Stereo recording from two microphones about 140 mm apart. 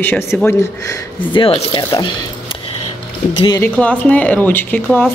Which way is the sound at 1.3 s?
40° left (ahead or behind).